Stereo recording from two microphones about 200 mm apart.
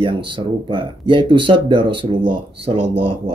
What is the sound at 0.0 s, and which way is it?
Speech, 25° right (ahead or behind).